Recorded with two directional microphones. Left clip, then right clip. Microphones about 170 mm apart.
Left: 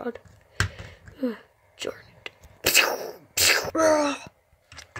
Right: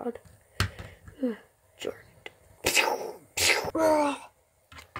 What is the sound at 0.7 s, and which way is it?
Whispering, 5° right (ahead or behind).